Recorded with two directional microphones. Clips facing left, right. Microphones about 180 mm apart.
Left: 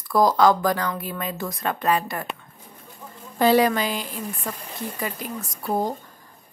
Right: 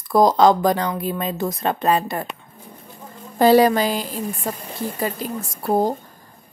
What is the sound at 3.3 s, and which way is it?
A woman's voice, 35° right (ahead or behind).